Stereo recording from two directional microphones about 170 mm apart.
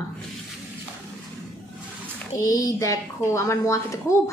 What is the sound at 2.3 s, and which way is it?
A woman's voice, 20° left (ahead or behind).